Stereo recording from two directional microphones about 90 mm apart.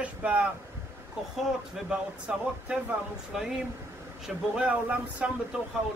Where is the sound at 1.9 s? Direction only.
10° right (ahead or behind).